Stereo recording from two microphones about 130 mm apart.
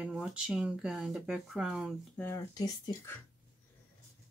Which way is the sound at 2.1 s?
15° left (ahead or behind).